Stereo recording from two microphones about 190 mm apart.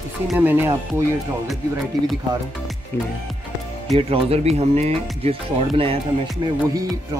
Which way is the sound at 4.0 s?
30° right (ahead or behind).